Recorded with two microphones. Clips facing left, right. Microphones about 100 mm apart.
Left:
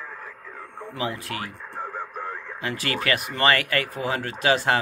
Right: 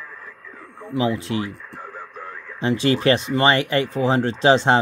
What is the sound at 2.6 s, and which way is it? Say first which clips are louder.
Speech: right 10 dB; 25° right (ahead or behind).